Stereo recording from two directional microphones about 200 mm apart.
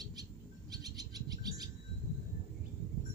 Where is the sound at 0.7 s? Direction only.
20° right (ahead or behind).